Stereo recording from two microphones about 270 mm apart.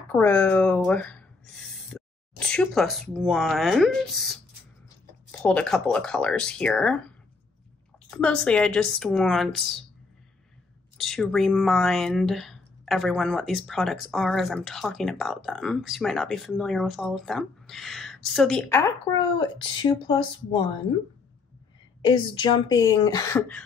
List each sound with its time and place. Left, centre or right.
0.1 s a woman's voice: centre
5.4 s speech: centre
8.1 s speech: centre
11.0 s speech: centre
19.3 s a woman's voice: centre
22.0 s a woman's voice: centre